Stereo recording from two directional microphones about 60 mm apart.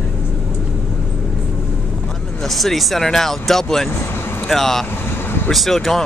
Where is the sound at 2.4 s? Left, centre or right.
Centre.